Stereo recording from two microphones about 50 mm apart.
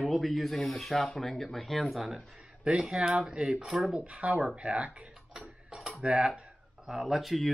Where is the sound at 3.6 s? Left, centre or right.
Centre.